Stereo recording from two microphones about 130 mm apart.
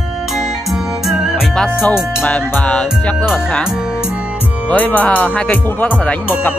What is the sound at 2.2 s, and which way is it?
Music, 15° left (ahead or behind).